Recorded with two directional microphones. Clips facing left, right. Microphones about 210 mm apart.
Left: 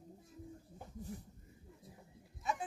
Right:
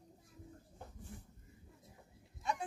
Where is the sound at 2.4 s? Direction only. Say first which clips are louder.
Even; centre (ahead or behind).